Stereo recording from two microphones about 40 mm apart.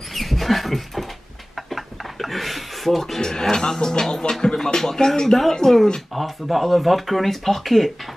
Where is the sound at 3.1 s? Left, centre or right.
Centre.